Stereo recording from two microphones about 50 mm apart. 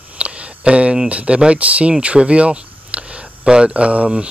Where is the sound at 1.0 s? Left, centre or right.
Right.